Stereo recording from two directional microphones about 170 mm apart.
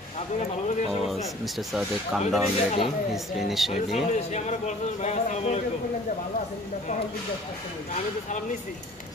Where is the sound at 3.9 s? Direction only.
45° left (ahead or behind).